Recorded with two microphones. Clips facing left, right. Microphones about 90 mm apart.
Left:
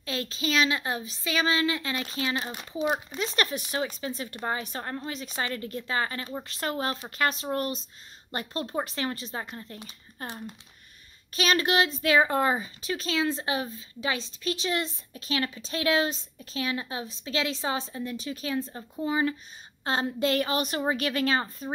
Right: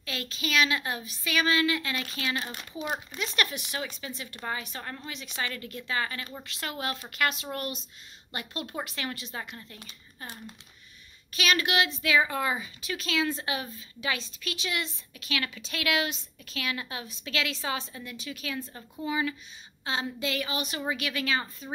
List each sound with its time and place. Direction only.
0.0 s a woman's voice: 30° left (ahead or behind)
10.2 s speech: 50° left (ahead or behind)
11.3 s speech: 35° left (ahead or behind)